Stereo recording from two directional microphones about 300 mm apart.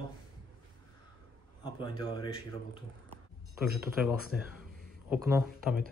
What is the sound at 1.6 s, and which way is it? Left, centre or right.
Speech, centre.